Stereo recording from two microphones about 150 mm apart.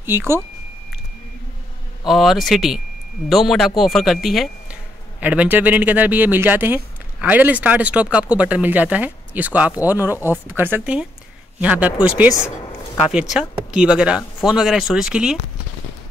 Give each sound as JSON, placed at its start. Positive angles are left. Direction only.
{"t": 0.0, "sound": "speech", "side_deg": -15}
{"t": 2.0, "sound": "speech", "side_deg": 0}